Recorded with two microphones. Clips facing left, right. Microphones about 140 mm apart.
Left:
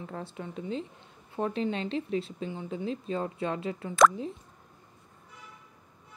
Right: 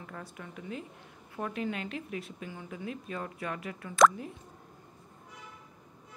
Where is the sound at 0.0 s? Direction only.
30° left (ahead or behind).